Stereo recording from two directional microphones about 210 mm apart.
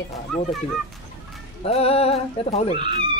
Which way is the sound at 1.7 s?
30° left (ahead or behind).